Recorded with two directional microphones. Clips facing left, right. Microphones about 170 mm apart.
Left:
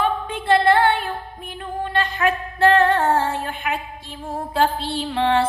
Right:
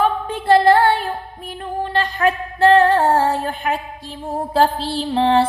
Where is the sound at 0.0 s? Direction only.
40° right (ahead or behind).